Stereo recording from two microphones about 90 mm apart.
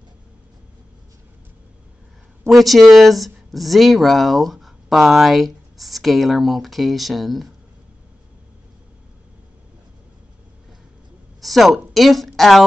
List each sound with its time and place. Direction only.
2.4 s speech: centre (ahead or behind)
11.4 s speech: centre (ahead or behind)